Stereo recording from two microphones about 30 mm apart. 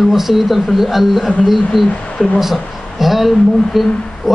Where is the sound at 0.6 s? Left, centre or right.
Centre.